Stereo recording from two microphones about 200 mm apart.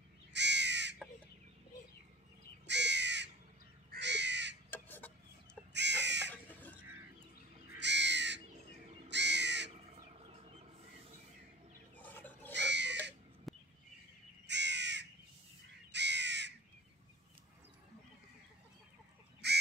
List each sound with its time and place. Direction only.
0.3 s crow: 60° right (ahead or behind)
2.6 s crow: 60° right (ahead or behind)
4.6 s a sound: 10° left (ahead or behind)
5.7 s crow: 60° right (ahead or behind)
7.8 s crow: 60° right (ahead or behind)
9.7 s a sound: 35° right (ahead or behind)
12.0 s fowl: 10° left (ahead or behind)
12.5 s a sound: 60° right (ahead or behind)
13.5 s bird: centre (ahead or behind)
14.5 s crow: 60° right (ahead or behind)
19.4 s crow: 55° right (ahead or behind)